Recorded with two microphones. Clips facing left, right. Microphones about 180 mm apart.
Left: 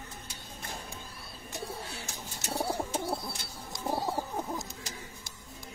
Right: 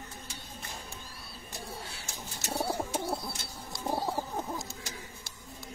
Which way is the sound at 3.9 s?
Centre (ahead or behind).